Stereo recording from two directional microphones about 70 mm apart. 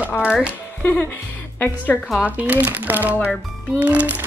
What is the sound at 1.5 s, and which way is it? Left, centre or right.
Speech, left.